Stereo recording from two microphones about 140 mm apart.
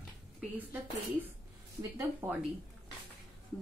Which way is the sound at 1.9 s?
15° right (ahead or behind).